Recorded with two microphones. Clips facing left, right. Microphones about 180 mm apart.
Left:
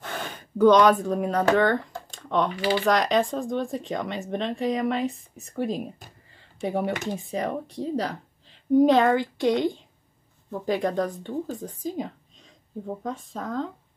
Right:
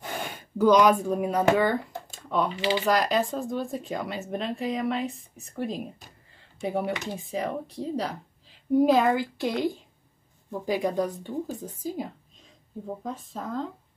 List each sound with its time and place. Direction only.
0.0 s speech: 10° right (ahead or behind)
2.5 s speech: 25° right (ahead or behind)
2.8 s speech: 5° right (ahead or behind)